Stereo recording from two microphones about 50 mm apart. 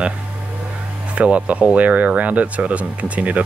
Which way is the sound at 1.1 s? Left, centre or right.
Right.